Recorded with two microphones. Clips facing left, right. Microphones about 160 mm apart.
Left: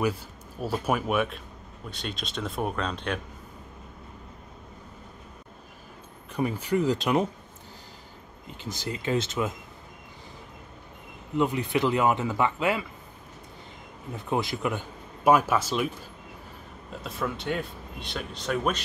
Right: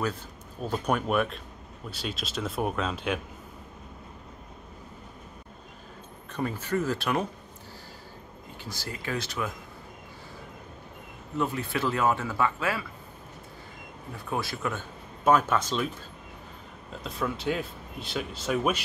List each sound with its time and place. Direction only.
0.0 s speech: 10° left (ahead or behind)
6.3 s speech: 15° left (ahead or behind)
8.6 s speech: 20° left (ahead or behind)
11.3 s speech: 20° left (ahead or behind)
14.1 s speech: 20° left (ahead or behind)
17.0 s speech: centre (ahead or behind)